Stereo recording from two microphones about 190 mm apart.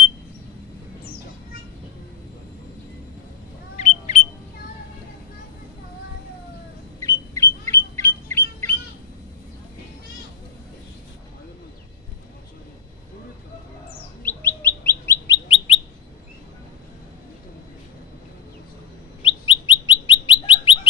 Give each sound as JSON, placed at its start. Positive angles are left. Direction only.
{"t": 3.7, "sound": "smoke detector", "side_deg": 40}
{"t": 7.0, "sound": "bird", "side_deg": 15}
{"t": 14.2, "sound": "bird", "side_deg": 10}
{"t": 15.4, "sound": "bird", "side_deg": 30}
{"t": 19.2, "sound": "bird", "side_deg": 25}